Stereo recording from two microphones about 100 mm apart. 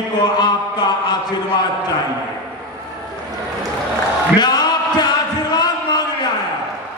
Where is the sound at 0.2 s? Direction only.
45° left (ahead or behind).